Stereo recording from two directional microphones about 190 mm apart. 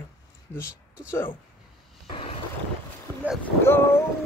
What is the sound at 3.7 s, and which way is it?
Speech, 10° left (ahead or behind).